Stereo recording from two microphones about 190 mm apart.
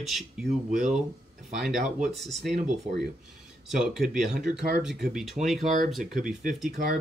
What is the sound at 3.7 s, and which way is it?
Speech, centre (ahead or behind).